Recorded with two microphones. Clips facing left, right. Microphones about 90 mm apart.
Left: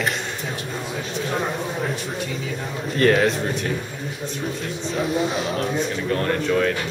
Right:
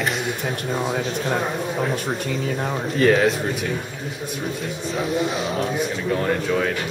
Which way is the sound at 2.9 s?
Centre (ahead or behind).